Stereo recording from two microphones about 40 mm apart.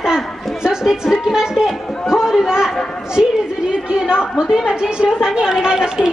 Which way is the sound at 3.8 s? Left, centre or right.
Right.